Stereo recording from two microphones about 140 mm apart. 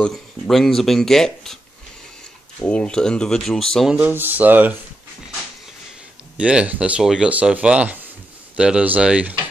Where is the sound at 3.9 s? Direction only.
10° right (ahead or behind).